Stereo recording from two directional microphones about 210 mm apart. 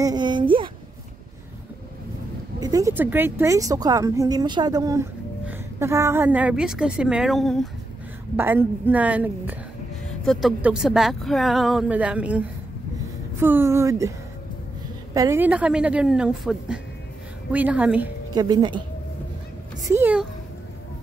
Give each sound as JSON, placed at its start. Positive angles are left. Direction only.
{"t": 0.0, "sound": "a sound", "side_deg": -20}
{"t": 2.6, "sound": "a woman's voice", "side_deg": -15}
{"t": 8.4, "sound": "a woman's voice", "side_deg": -10}
{"t": 15.1, "sound": "a woman's voice", "side_deg": -15}
{"t": 18.3, "sound": "a woman's voice", "side_deg": -20}
{"t": 19.9, "sound": "a woman's voice", "side_deg": -10}